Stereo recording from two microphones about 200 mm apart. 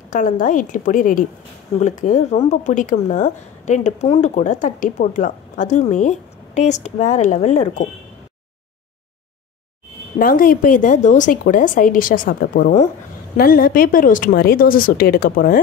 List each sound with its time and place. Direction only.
0.1 s speech: 40° left (ahead or behind)
10.1 s a woman's voice: 45° left (ahead or behind)